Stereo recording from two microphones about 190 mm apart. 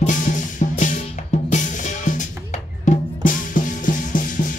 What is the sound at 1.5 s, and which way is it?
Drum, 40° left (ahead or behind).